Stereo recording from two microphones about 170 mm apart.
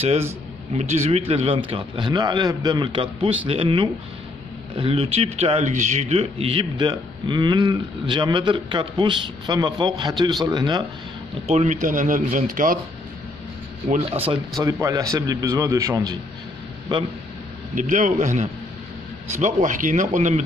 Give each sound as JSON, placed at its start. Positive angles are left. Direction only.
{"t": 0.0, "sound": "a man's voice", "side_deg": -40}
{"t": 11.4, "sound": "speech", "side_deg": -40}
{"t": 14.2, "sound": "a man's voice", "side_deg": -35}
{"t": 14.6, "sound": "speech", "side_deg": -20}
{"t": 17.7, "sound": "speech", "side_deg": -50}